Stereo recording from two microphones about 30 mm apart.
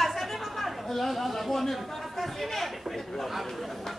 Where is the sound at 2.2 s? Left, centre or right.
Centre.